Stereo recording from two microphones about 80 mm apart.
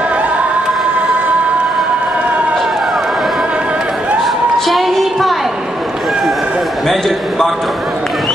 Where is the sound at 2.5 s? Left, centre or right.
Centre.